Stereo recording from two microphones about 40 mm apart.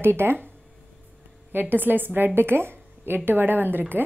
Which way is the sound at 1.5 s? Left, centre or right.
Right.